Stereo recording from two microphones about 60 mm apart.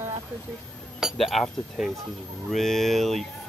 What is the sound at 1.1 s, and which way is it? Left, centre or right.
Speech, centre.